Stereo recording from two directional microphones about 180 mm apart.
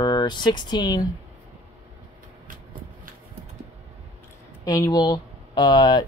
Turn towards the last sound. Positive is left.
turn(degrees=25)  # may be behind; listen again after turning